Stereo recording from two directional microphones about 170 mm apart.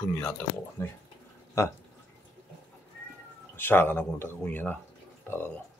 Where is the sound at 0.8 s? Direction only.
15° left (ahead or behind).